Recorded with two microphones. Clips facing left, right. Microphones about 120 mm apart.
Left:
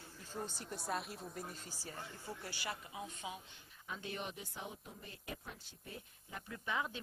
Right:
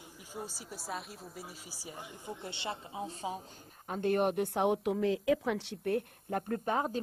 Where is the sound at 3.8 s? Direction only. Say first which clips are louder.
Right 15 dB; 50° right (ahead or behind).